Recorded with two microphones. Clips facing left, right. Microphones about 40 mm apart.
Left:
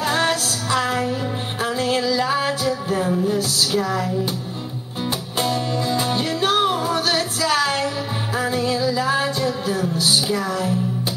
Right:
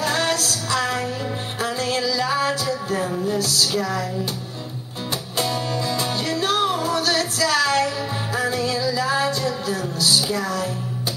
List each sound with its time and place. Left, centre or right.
0.0 s music: left
5.4 s music: centre